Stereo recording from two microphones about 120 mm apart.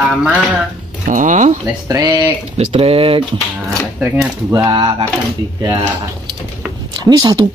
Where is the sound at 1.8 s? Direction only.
30° right (ahead or behind).